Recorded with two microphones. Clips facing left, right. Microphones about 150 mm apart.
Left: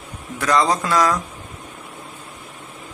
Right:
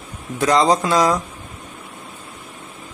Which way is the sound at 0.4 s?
20° right (ahead or behind).